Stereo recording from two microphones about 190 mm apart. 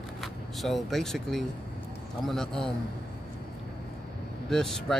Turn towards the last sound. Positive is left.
turn(degrees=0)  # may be behind; listen again after turning